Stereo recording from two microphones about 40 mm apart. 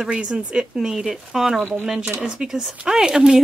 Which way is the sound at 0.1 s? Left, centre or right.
Centre.